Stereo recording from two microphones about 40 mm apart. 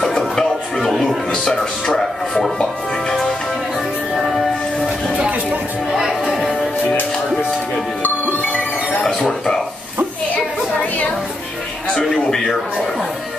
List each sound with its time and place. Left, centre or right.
0.4 s a sound: centre
1.0 s music: centre
4.1 s music: centre
5.1 s music: right
5.9 s music: centre